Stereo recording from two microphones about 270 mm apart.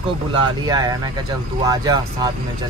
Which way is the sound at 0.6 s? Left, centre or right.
Centre.